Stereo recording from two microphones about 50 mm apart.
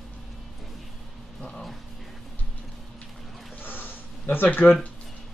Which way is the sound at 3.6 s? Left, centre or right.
Left.